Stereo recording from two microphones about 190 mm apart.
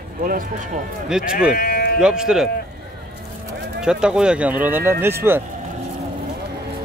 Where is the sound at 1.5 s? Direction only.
50° left (ahead or behind).